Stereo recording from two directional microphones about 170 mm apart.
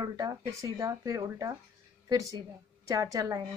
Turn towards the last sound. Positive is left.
turn(degrees=-20)  # may be behind; listen again after turning